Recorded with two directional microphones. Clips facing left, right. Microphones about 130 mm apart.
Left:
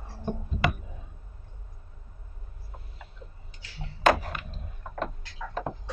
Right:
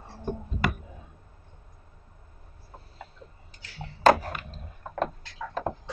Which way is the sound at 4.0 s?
40° right (ahead or behind).